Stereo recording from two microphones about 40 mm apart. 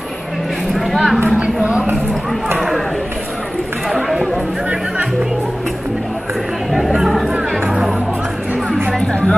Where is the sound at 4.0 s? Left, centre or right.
Centre.